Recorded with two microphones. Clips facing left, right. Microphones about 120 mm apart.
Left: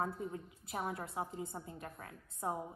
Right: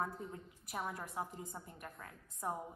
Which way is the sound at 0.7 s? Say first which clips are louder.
Left 2 dB; 30° left (ahead or behind).